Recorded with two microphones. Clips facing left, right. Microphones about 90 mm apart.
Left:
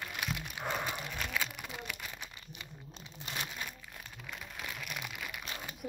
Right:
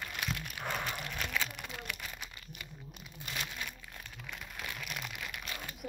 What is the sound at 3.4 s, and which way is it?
Crumpling, 15° left (ahead or behind).